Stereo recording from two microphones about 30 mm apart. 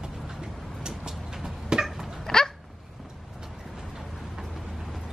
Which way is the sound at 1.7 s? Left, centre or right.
Centre.